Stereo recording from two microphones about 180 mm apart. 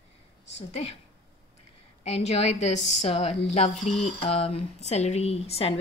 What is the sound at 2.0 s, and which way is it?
Speech, 35° left (ahead or behind).